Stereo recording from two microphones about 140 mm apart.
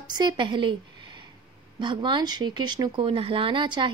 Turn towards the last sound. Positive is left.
turn(degrees=-35)  # may be behind; listen again after turning